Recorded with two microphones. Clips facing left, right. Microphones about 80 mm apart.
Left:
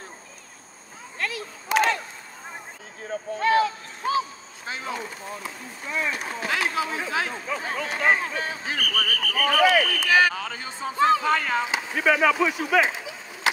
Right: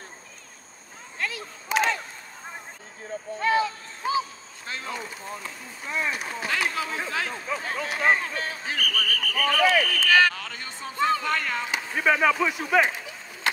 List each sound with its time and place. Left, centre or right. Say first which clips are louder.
1.2 s a sound: left 1 dB; centre
3.3 s speech: left 3 dB; centre
4.6 s speech: left 2 dB; centre
7.7 s speech: left 1 dB; centre
11.9 s speech: left 1 dB; centre
12.8 s a sound: left 1 dB; centre